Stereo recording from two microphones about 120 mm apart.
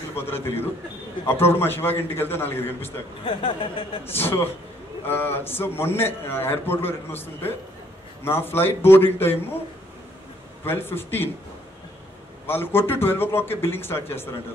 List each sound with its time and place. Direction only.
0.1 s a man's voice: 20° left (ahead or behind)
3.3 s speech: 45° left (ahead or behind)
4.0 s a man's voice: 20° left (ahead or behind)
10.6 s a man's voice: 20° left (ahead or behind)
12.4 s a man's voice: 20° left (ahead or behind)